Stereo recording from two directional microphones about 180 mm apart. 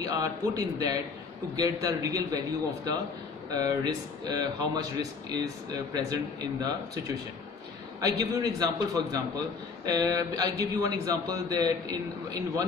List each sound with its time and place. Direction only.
0.0 s a man's voice: 20° right (ahead or behind)
8.0 s a man's voice: 20° right (ahead or behind)